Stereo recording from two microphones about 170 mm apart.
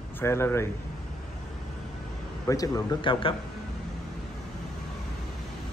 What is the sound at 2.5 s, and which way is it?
Speech, 20° left (ahead or behind).